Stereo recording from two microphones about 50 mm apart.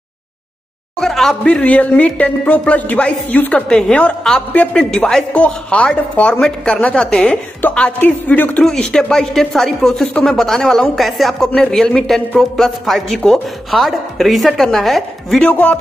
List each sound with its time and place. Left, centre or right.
1.0 s speech: centre
1.4 s speech: left
3.6 s speech: centre
3.9 s speech: left
4.7 s speech: centre
5.3 s speech: left
7.7 s speech: left
8.6 s speech: centre
15.4 s speech: left